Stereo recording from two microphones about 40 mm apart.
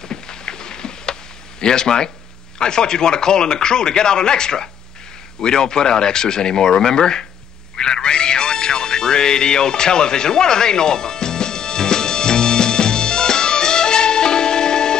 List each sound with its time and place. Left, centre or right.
0.1 s a sound: centre
1.6 s speech: centre
7.7 s music: centre